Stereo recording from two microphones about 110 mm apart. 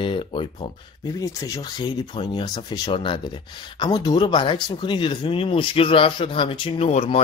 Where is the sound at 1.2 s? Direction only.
30° left (ahead or behind); by 6.9 s 45° left (ahead or behind).